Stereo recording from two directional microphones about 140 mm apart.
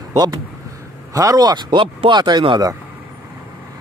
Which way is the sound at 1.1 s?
25° right (ahead or behind).